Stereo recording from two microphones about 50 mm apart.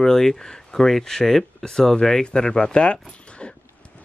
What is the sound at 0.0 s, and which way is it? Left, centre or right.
Speech, centre.